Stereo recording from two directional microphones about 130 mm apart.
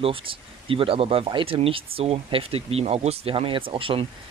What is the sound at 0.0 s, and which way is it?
Speech, 45° right (ahead or behind).